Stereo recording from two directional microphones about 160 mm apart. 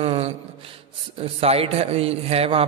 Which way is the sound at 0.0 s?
35° right (ahead or behind).